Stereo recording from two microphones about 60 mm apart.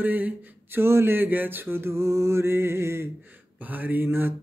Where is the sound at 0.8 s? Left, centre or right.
Right.